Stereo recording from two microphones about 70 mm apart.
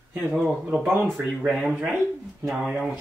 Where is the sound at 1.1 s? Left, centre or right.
Centre.